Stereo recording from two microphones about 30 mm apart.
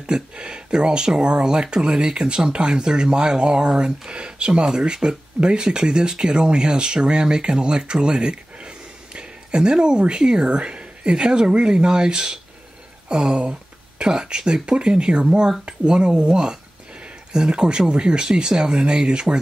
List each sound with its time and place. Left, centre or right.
0.0 s speech: right
13.4 s a sound: right
14.0 s speech: right